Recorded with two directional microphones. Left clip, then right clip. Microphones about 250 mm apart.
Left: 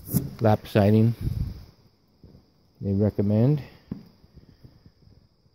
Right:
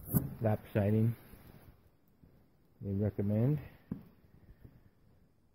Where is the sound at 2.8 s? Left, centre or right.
Left.